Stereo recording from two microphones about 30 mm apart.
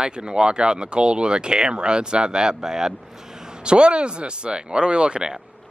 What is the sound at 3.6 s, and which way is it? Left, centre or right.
Speech, right.